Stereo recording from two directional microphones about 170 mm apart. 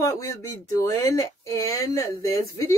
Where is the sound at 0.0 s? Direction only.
20° left (ahead or behind).